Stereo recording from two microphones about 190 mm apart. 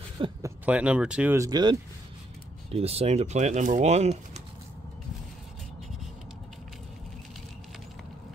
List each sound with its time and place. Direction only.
0.2 s speech: 25° right (ahead or behind)
0.7 s speech: 5° right (ahead or behind); by 4.4 s 35° right (ahead or behind)